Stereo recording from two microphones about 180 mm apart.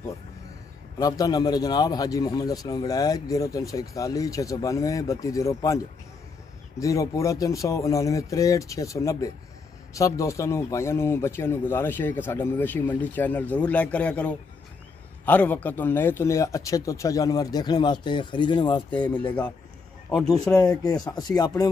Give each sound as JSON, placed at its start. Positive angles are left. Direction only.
{"t": 0.9, "sound": "a man's voice", "side_deg": 20}
{"t": 6.8, "sound": "a man's voice", "side_deg": 15}
{"t": 19.2, "sound": "speech", "side_deg": 5}
{"t": 20.8, "sound": "a man's voice", "side_deg": 20}